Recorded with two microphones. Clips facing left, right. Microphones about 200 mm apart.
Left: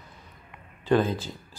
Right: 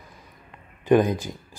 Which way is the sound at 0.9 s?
15° right (ahead or behind).